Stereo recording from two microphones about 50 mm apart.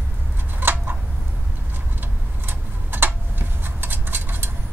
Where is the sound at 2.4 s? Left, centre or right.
Right.